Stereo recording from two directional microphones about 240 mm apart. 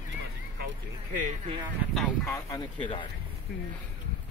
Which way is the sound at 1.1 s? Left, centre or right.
Right.